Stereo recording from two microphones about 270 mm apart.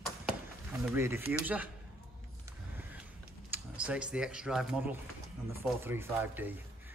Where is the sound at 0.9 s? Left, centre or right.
Centre.